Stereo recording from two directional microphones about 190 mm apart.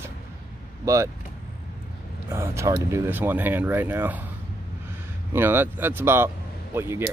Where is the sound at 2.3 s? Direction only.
15° right (ahead or behind).